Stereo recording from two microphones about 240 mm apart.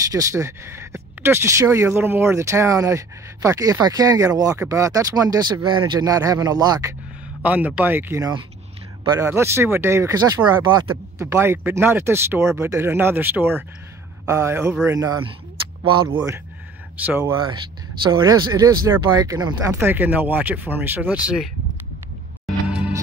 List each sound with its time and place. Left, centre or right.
0.1 s speech: centre
16.9 s speech: centre
18.0 s speech: centre
22.7 s music: centre